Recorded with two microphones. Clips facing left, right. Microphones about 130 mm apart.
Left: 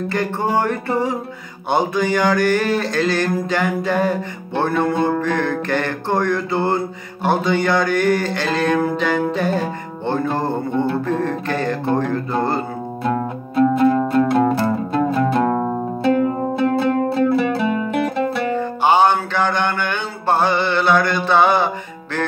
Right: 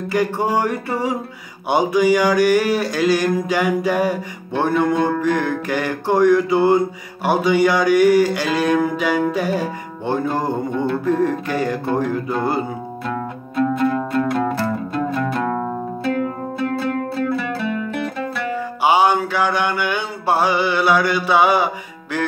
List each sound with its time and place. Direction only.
0.1 s a sound: 10° right (ahead or behind)
13.0 s music: 30° left (ahead or behind)
18.1 s music: 25° left (ahead or behind)
18.5 s music: 10° right (ahead or behind)